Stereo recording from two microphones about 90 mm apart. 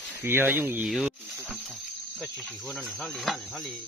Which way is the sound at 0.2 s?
25° right (ahead or behind).